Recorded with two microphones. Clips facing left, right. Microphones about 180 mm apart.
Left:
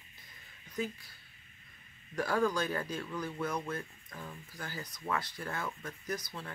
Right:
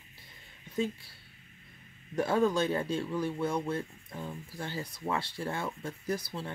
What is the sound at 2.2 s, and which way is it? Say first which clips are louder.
Speech: right 4 dB; 25° right (ahead or behind).